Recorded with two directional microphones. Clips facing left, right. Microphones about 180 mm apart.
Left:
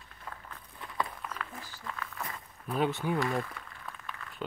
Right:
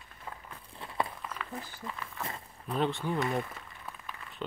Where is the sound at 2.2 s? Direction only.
25° right (ahead or behind).